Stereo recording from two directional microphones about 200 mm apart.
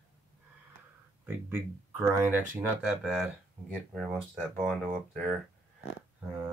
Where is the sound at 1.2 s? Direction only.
10° right (ahead or behind).